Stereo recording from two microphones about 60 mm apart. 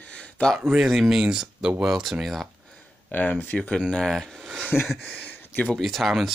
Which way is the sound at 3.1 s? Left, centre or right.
Left.